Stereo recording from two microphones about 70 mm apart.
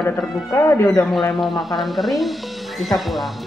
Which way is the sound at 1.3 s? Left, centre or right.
Centre.